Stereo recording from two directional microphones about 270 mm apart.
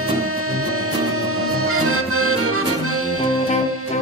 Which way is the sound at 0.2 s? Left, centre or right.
Right.